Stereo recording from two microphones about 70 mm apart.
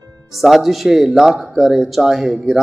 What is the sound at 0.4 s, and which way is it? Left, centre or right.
A woman's voice, centre.